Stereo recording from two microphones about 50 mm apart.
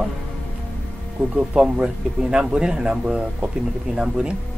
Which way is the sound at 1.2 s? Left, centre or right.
Centre.